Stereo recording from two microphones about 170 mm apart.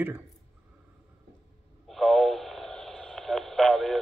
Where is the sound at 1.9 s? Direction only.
Centre (ahead or behind).